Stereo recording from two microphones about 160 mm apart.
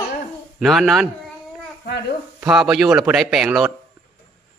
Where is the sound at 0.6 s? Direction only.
Centre (ahead or behind).